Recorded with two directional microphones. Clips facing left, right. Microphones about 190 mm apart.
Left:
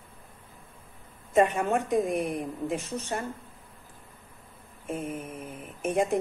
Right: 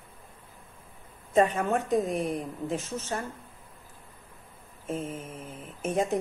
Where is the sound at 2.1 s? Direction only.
15° left (ahead or behind).